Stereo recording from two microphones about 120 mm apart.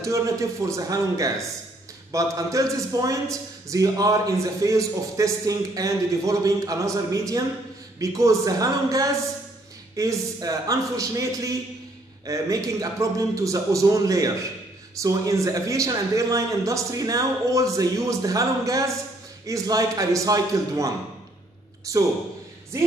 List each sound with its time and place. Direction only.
0.0 s a man's voice: 25° right (ahead or behind)